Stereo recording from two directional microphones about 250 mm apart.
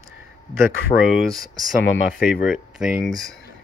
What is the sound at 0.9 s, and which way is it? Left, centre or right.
Speech, left.